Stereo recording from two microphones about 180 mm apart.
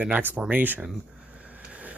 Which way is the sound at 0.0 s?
10° right (ahead or behind).